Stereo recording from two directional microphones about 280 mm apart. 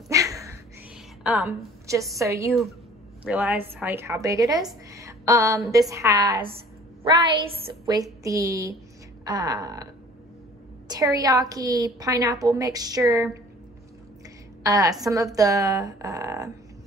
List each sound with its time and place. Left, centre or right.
0.1 s a sound: centre
2.1 s a woman's voice: centre
7.8 s a woman's voice: centre
10.9 s a woman's voice: centre
14.6 s a woman's voice: centre